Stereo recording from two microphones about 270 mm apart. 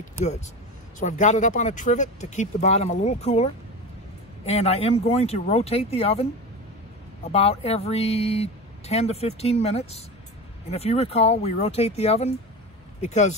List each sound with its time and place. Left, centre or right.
0.9 s speech: left
4.5 s speech: left
7.2 s speech: left